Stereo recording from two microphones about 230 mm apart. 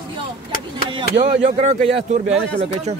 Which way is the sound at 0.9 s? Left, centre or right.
Right.